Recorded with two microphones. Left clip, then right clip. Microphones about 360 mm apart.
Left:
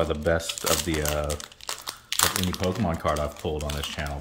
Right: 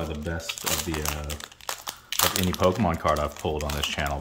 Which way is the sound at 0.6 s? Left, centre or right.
Centre.